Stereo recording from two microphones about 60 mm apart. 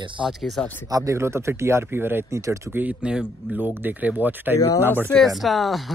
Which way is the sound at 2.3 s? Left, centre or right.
Right.